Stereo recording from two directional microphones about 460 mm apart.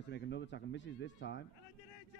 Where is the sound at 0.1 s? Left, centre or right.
Left.